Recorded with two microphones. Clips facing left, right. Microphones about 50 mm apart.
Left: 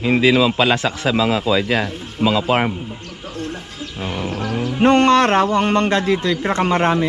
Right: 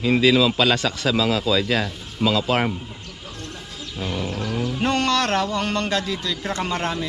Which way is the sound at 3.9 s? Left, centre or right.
Left.